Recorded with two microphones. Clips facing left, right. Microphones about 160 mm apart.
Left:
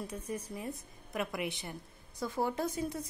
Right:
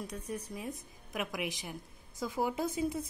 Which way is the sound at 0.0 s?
10° left (ahead or behind).